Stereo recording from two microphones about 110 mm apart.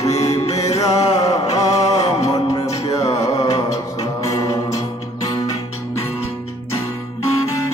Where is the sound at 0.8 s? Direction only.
35° left (ahead or behind).